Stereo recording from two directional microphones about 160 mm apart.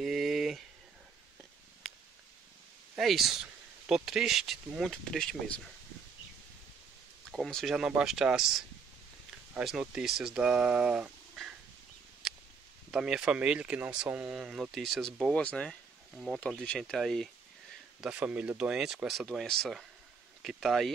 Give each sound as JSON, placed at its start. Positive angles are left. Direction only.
{"t": 0.0, "sound": "a sound", "side_deg": 0}
{"t": 1.8, "sound": "purr", "side_deg": 0}
{"t": 3.0, "sound": "speech", "side_deg": 0}
{"t": 7.2, "sound": "speech", "side_deg": 0}
{"t": 12.9, "sound": "speech", "side_deg": -5}